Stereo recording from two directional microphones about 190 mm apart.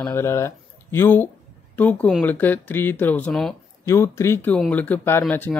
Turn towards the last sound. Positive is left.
turn(degrees=10)  # may be behind; listen again after turning